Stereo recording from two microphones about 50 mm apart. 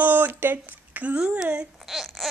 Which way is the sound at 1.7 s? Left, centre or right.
Centre.